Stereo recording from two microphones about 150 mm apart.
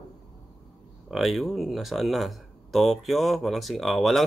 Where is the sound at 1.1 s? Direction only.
Centre (ahead or behind).